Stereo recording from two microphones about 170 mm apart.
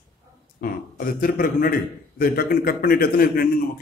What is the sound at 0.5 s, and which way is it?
A man's voice, 55° left (ahead or behind).